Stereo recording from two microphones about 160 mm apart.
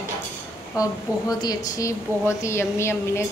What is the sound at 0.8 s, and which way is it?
A woman's voice, 20° left (ahead or behind).